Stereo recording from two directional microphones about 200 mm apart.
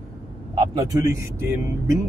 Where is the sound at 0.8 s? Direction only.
15° right (ahead or behind).